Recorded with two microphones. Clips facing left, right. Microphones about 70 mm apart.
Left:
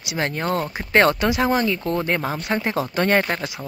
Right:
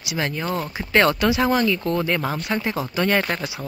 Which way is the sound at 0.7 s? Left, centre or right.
Left.